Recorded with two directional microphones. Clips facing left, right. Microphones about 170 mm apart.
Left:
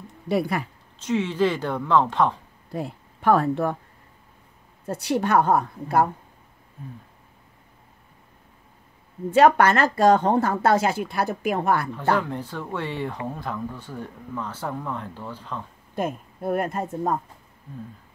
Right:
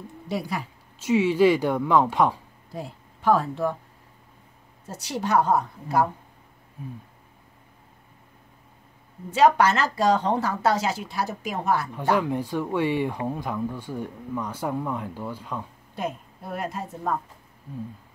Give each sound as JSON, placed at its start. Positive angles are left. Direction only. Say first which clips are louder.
{"t": 0.3, "sound": "speech", "louder": "left 6 dB", "side_deg": 60}
{"t": 0.9, "sound": "speech", "louder": "right 3 dB", "side_deg": -10}
{"t": 2.7, "sound": "speech", "louder": "left 5 dB", "side_deg": 60}
{"t": 4.8, "sound": "speech", "louder": "left 5 dB", "side_deg": 60}
{"t": 9.3, "sound": "speech", "louder": "left 2 dB", "side_deg": 55}
{"t": 11.9, "sound": "speech", "louder": "even", "side_deg": -15}
{"t": 15.9, "sound": "a woman's voice", "louder": "left 4 dB", "side_deg": 50}